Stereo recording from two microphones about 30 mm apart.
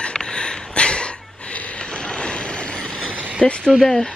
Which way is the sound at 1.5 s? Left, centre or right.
Left.